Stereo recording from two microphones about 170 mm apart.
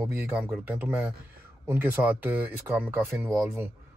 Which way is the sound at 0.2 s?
5° right (ahead or behind).